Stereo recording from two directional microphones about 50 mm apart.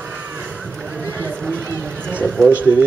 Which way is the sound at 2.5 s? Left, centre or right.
Right.